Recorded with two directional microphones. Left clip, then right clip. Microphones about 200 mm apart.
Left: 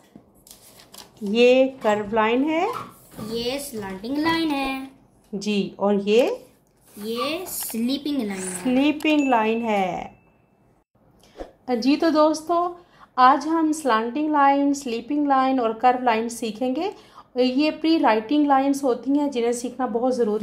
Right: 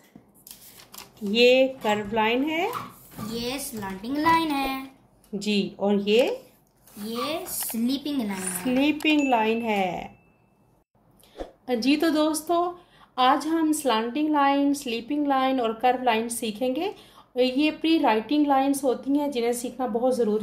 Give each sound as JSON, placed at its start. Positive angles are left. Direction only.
{"t": 1.3, "sound": "a woman's voice", "side_deg": 10}
{"t": 3.3, "sound": "speech", "side_deg": 0}
{"t": 5.4, "sound": "a woman's voice", "side_deg": 10}
{"t": 7.0, "sound": "speech", "side_deg": 0}
{"t": 8.6, "sound": "a woman's voice", "side_deg": 15}
{"t": 8.9, "sound": "speech", "side_deg": 0}
{"t": 9.3, "sound": "a woman's voice", "side_deg": 15}
{"t": 11.6, "sound": "a woman's voice", "side_deg": 10}